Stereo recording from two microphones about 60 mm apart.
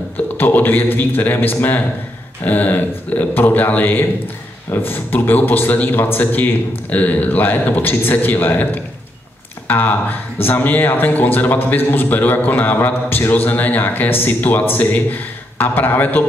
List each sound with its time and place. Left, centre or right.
0.4 s speech: left